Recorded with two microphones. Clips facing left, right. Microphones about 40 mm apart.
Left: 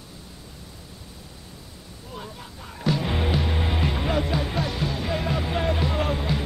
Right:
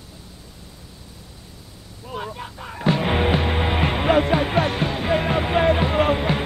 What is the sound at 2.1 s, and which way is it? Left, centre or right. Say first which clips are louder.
Music: right 8 dB; right.